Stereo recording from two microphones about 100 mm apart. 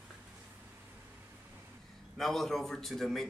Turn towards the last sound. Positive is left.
turn(degrees=5)  # may be behind; listen again after turning